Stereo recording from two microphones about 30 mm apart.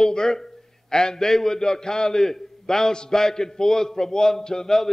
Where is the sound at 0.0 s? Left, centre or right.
Left.